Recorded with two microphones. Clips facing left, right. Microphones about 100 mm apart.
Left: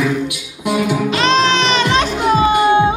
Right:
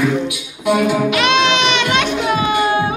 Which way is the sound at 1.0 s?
35° left (ahead or behind).